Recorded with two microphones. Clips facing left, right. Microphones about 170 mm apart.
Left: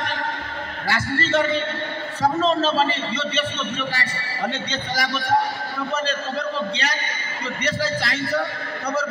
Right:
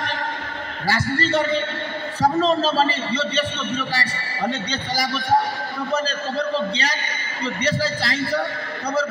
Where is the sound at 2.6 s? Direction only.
35° right (ahead or behind).